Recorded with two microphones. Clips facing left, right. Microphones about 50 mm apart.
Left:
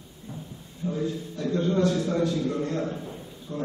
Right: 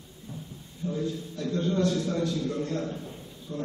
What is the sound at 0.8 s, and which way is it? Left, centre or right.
A man's voice, centre.